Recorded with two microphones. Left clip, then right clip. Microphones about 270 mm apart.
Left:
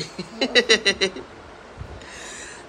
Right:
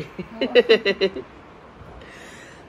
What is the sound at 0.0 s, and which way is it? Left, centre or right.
A man's voice, centre.